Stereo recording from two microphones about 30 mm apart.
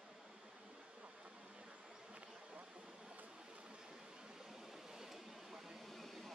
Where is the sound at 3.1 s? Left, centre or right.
Right.